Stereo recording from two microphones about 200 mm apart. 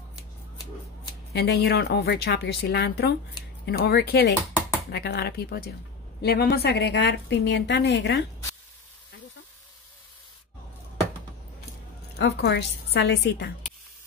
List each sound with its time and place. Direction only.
1.3 s a woman's voice: 55° left (ahead or behind)
12.2 s a woman's voice: 55° left (ahead or behind)